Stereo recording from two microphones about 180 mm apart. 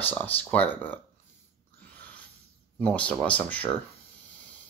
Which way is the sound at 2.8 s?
5° left (ahead or behind).